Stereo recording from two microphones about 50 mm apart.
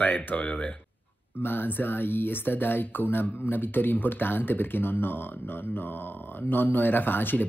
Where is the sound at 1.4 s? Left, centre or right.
Left.